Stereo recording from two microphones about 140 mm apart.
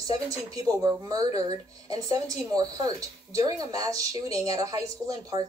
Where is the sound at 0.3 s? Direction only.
25° right (ahead or behind).